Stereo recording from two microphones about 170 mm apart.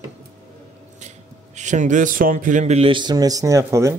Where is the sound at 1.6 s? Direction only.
45° right (ahead or behind).